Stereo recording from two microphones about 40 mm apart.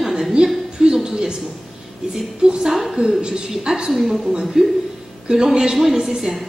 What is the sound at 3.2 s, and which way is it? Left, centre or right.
Speech, right.